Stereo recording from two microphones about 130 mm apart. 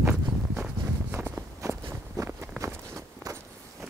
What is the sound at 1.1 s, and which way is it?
Walk, 15° right (ahead or behind).